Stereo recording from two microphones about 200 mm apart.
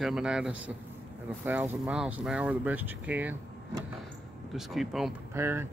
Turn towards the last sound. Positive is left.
turn(degrees=-10)  # may be behind; listen again after turning